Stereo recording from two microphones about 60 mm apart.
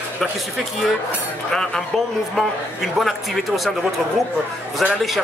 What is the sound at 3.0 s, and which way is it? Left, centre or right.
Speech, centre.